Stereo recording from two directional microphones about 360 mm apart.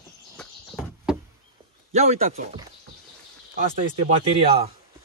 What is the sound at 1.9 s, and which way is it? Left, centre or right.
Speech, centre.